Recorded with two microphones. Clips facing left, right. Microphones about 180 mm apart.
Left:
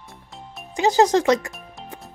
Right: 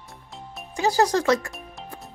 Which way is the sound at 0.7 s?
20° left (ahead or behind).